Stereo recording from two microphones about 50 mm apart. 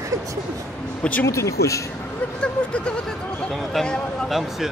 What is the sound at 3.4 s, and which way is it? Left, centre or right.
Speech, centre.